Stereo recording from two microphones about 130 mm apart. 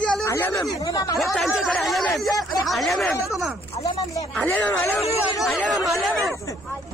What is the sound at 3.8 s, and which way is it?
Speech, 25° left (ahead or behind).